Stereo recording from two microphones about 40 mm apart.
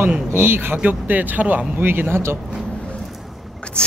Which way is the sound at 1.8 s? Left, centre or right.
Right.